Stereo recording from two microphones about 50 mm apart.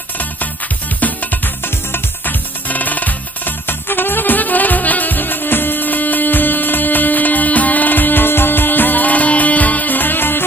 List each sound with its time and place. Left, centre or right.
1.0 s music: left
2.7 s music: left